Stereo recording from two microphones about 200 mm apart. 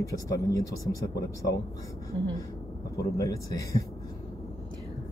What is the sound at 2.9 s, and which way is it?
Speech, 15° left (ahead or behind).